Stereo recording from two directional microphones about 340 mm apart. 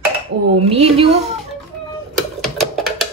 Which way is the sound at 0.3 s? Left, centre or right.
Right.